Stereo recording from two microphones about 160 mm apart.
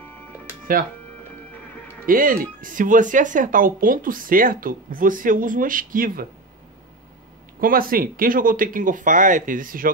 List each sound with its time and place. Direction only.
2.0 s speech: 60° right (ahead or behind)
7.6 s speech: 60° right (ahead or behind)